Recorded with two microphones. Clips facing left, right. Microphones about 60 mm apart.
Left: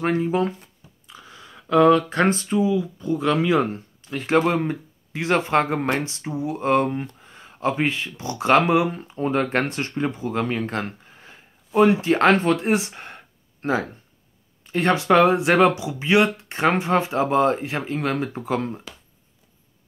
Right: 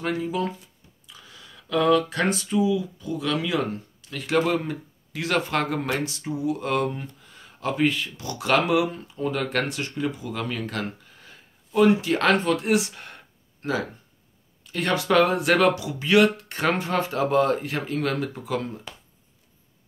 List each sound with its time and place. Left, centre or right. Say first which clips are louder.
0.0 s speech: left 5 dB; left
18.3 s speech: left 3 dB; left